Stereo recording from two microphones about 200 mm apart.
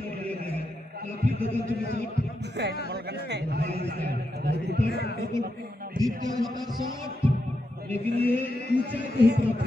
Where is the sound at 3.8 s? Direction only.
55° right (ahead or behind).